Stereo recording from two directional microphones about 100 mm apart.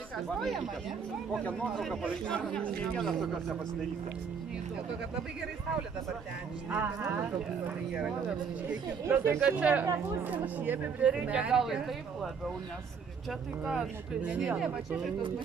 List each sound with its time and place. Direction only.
1.4 s speech: 5° left (ahead or behind)
6.7 s speech: 15° right (ahead or behind)
9.0 s speech: 25° right (ahead or behind); by 12.5 s 5° right (ahead or behind)
13.7 s speech: 10° right (ahead or behind)